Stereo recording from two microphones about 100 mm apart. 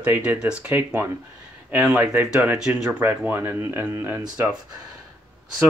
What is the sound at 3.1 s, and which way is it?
Speech, 20° right (ahead or behind).